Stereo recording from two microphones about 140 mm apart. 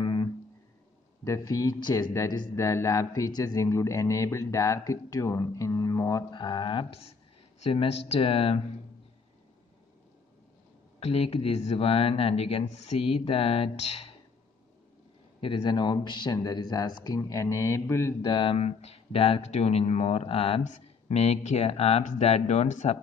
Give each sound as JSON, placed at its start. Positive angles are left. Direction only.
{"t": 0.0, "sound": "music", "side_deg": 35}
{"t": 1.2, "sound": "speech", "side_deg": 25}
{"t": 11.0, "sound": "speech", "side_deg": 45}
{"t": 15.4, "sound": "speech", "side_deg": 35}
{"t": 18.2, "sound": "speech", "side_deg": 35}
{"t": 20.6, "sound": "speech", "side_deg": 55}